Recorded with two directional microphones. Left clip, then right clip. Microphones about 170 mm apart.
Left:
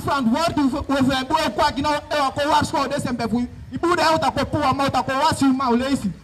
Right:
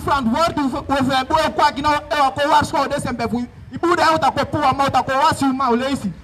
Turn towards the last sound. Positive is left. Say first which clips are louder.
# right 2 dB
turn(degrees=-20)  # may be behind; listen again after turning